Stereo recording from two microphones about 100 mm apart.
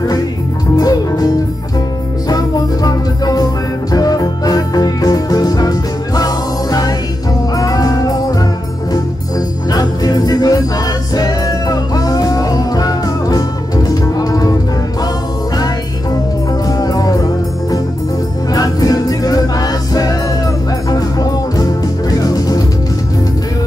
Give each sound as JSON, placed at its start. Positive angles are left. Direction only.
{"t": 0.7, "sound": "music", "side_deg": 40}
{"t": 9.7, "sound": "music", "side_deg": 35}
{"t": 16.6, "sound": "music", "side_deg": 40}